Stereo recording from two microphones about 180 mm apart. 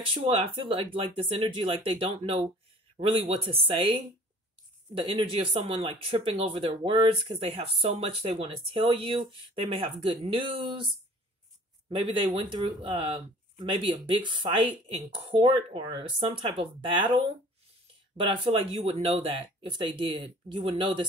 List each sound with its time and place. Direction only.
0.0 s speech: 30° right (ahead or behind)
11.9 s speech: 25° right (ahead or behind)